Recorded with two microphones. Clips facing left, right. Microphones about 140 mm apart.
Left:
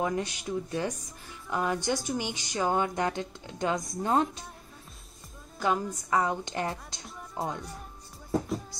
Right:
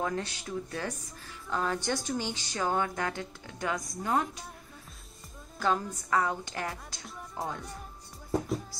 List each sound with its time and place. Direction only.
0.0 s speech: 15° left (ahead or behind)
5.6 s a woman's voice: 10° left (ahead or behind)